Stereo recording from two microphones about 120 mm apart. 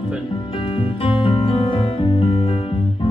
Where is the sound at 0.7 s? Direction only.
50° left (ahead or behind).